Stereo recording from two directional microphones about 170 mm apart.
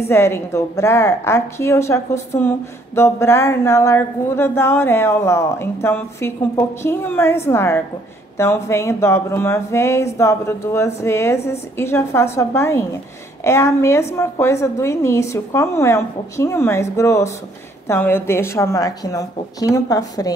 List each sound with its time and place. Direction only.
0.1 s a woman's voice: 15° left (ahead or behind)